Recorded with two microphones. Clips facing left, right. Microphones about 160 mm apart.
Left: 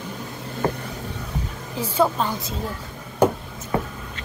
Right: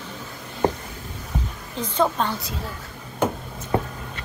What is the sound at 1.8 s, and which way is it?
Speech, 10° left (ahead or behind).